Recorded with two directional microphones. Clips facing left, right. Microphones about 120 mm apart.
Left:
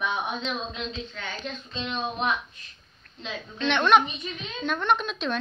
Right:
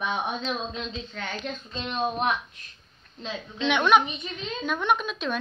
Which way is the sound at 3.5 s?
10° right (ahead or behind).